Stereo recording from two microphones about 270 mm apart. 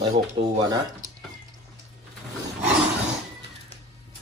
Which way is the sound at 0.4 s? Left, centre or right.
Centre.